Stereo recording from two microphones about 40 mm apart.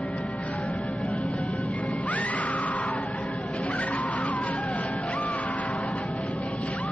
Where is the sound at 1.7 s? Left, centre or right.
Left.